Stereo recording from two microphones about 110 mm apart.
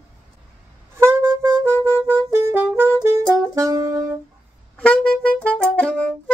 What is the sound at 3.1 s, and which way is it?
Saxophone, 30° right (ahead or behind).